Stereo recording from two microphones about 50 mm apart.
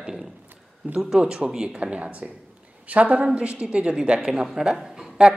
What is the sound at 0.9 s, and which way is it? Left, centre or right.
Speech, centre.